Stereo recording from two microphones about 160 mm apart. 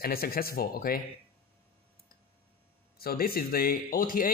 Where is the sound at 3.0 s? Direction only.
70° left (ahead or behind).